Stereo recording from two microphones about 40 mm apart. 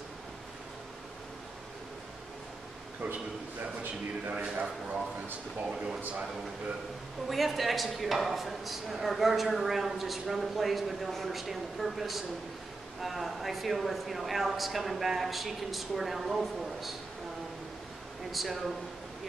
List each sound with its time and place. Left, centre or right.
4.3 s speech: right
7.2 s speech: centre
18.3 s speech: centre